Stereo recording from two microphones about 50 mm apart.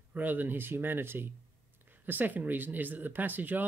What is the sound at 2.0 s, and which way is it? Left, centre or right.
Speech, right.